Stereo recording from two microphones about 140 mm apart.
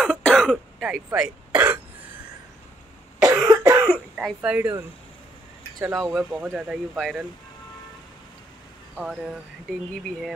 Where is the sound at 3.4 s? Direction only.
30° right (ahead or behind).